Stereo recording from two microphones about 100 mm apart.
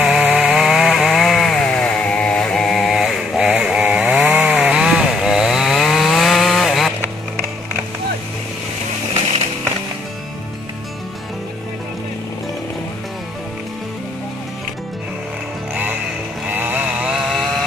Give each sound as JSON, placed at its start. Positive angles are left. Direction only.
{"t": 0.0, "sound": "chainsaw", "side_deg": -10}
{"t": 4.3, "sound": "chainsaw", "side_deg": -15}
{"t": 15.7, "sound": "music", "side_deg": -20}
{"t": 16.4, "sound": "vehicle", "side_deg": -15}
{"t": 17.3, "sound": "chainsaw", "side_deg": 0}